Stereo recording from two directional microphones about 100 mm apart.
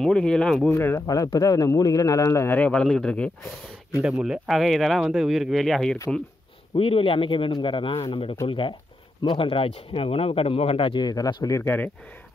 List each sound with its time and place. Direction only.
0.0 s speech: 5° left (ahead or behind)
0.7 s speech: 25° left (ahead or behind)
1.0 s speech: 35° left (ahead or behind)
2.5 s a man's voice: 10° left (ahead or behind)
4.0 s speech: 10° right (ahead or behind)
6.7 s speech: 70° left (ahead or behind); by 11.5 s 45° left (ahead or behind)
11.5 s speech: 20° left (ahead or behind)